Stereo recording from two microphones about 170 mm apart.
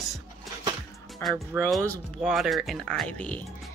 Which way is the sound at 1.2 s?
15° left (ahead or behind).